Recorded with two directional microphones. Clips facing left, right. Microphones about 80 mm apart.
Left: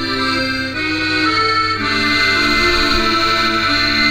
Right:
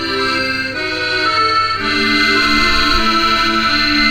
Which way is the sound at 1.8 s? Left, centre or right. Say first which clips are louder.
Right 1 dB; left.